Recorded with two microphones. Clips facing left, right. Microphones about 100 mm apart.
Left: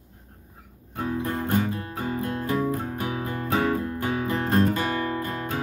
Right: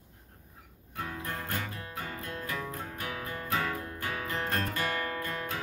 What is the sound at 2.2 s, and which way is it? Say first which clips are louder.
Music: left 13 dB; 30° left (ahead or behind).